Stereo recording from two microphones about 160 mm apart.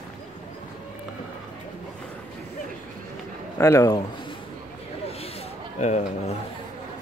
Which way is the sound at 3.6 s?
20° left (ahead or behind).